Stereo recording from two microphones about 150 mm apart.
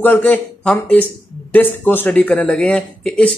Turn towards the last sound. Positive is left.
turn(degrees=5)  # may be behind; listen again after turning